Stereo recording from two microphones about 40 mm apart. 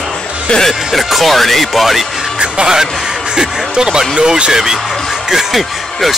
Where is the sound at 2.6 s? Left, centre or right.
Centre.